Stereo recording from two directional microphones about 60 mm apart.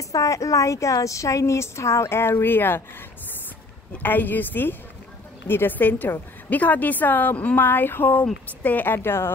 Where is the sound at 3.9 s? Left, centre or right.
Left.